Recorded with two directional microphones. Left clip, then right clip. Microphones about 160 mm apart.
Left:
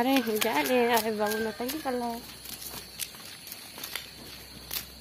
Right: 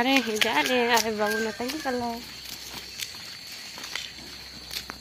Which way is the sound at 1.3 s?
40° right (ahead or behind).